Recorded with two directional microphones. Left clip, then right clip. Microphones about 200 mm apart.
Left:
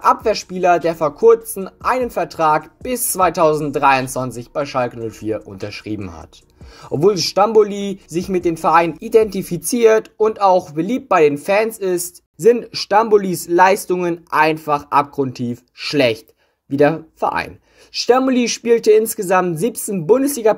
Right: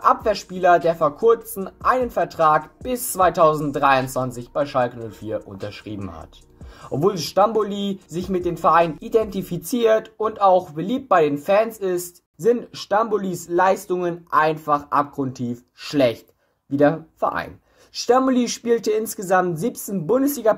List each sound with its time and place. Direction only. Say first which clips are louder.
0.0 s speech: left 3 dB; 25° left (ahead or behind)